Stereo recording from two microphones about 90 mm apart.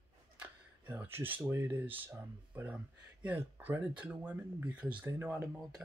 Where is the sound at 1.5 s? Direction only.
25° right (ahead or behind).